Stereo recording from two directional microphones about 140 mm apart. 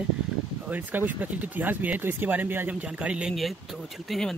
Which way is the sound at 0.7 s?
10° right (ahead or behind).